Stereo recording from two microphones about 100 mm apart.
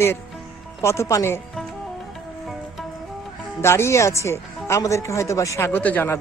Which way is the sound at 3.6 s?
25° left (ahead or behind).